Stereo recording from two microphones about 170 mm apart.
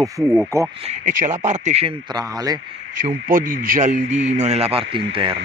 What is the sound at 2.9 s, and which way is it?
A man's voice, 50° right (ahead or behind).